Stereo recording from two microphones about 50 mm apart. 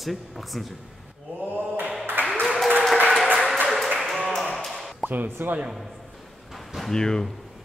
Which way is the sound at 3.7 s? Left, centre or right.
Centre.